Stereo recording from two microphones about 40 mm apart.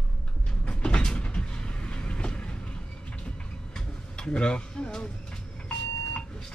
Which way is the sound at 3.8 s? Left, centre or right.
Left.